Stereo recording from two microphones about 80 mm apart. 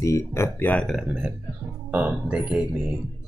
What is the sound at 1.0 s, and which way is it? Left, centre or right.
Speech, centre.